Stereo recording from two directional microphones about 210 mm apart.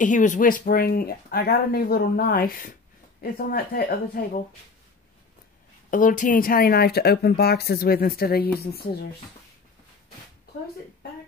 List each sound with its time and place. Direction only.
0.0 s speech: 35° left (ahead or behind)
5.9 s speech: 40° left (ahead or behind)